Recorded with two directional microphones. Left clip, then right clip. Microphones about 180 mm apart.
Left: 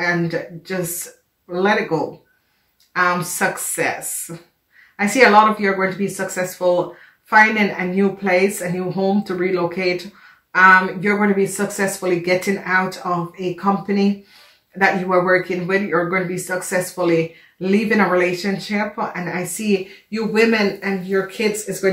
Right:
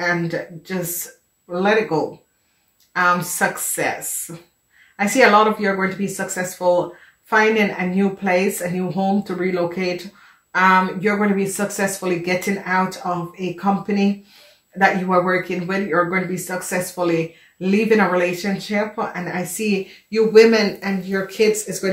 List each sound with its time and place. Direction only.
0.0 s speech: 30° right (ahead or behind)
14.8 s speech: 30° right (ahead or behind); by 22.0 s 55° right (ahead or behind)